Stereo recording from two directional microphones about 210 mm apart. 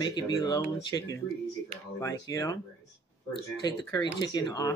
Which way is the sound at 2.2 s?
15° left (ahead or behind).